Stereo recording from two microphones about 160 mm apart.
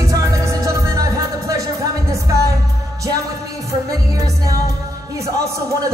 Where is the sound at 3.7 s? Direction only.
20° right (ahead or behind).